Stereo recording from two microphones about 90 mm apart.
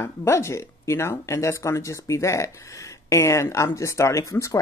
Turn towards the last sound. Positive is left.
turn(degrees=35)  # may be behind; listen again after turning